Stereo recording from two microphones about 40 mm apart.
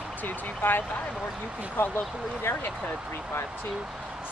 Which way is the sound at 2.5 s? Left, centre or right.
Left.